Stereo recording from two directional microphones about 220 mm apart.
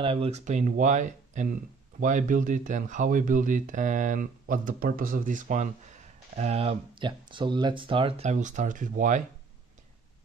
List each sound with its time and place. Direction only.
0.0 s speech: 25° right (ahead or behind)